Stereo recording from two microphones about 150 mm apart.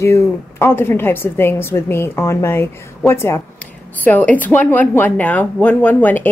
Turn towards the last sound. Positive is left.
turn(degrees=10)  # may be behind; listen again after turning